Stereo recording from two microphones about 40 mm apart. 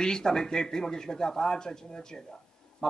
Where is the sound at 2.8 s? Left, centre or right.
Centre.